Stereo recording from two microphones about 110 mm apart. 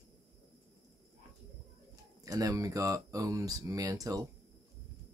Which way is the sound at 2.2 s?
30° right (ahead or behind).